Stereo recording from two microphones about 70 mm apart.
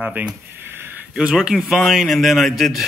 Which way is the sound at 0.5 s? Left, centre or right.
Right.